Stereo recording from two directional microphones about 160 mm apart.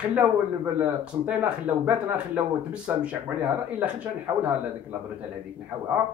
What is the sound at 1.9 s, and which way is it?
Speech, 10° right (ahead or behind).